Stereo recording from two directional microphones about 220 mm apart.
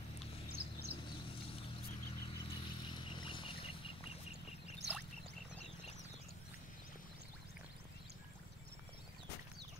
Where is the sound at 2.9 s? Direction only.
20° left (ahead or behind).